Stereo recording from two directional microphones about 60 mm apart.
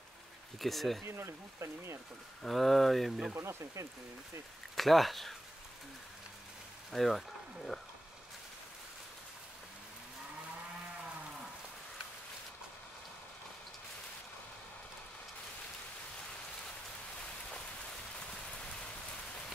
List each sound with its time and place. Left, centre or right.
0.6 s speech: centre
1.0 s speech: right
2.4 s speech: centre
3.3 s speech: right
4.7 s speech: centre
6.9 s speech: centre